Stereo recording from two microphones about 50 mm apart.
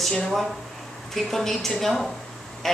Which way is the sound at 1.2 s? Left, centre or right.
Centre.